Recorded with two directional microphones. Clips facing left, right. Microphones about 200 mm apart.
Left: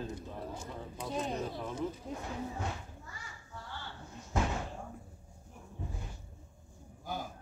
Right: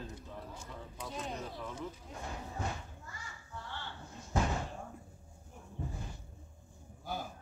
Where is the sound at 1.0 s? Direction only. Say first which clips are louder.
Left 6 dB; 30° left (ahead or behind).